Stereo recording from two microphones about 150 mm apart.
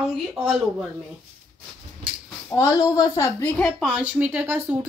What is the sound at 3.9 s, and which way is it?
Speech, 10° right (ahead or behind).